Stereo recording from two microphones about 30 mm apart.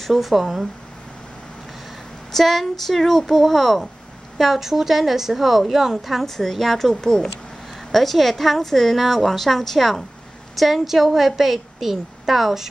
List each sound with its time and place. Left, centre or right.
0.2 s a woman's voice: centre
2.3 s speech: centre
4.6 s a woman's voice: centre
6.2 s speech: centre
7.9 s a woman's voice: centre